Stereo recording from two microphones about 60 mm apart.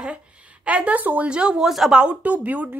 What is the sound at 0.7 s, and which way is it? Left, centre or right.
A woman's voice, right.